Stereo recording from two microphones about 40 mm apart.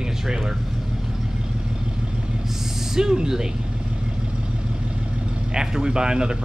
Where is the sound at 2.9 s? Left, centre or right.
Centre.